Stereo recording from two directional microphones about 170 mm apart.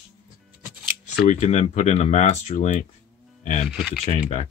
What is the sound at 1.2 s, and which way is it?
Speech, 40° left (ahead or behind).